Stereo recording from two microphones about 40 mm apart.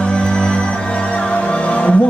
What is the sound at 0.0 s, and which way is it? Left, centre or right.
Music, left.